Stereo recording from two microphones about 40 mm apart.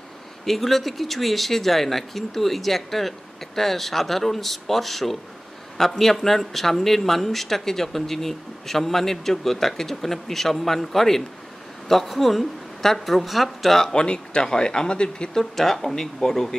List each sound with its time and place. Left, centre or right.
0.5 s a man's voice: centre
13.9 s speech: left
15.5 s a man's voice: centre